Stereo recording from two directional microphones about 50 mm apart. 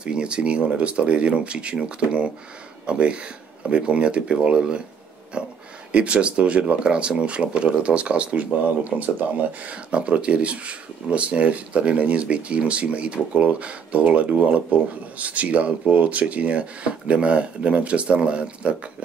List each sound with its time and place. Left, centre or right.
0.0 s speech: centre